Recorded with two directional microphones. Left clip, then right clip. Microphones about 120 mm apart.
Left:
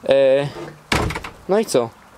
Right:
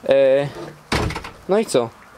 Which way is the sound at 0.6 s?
45° left (ahead or behind).